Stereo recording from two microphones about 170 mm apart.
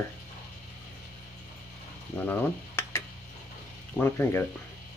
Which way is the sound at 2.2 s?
15° left (ahead or behind).